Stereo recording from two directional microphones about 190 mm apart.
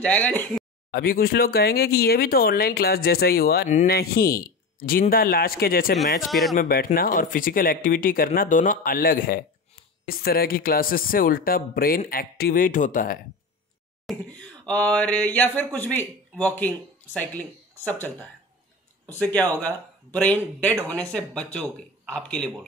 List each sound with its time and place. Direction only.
0.0 s a man's voice: 10° left (ahead or behind)
0.9 s speech: 50° left (ahead or behind)
6.2 s speech: centre (ahead or behind)
6.5 s speech: 45° left (ahead or behind)
14.0 s a man's voice: 5° left (ahead or behind)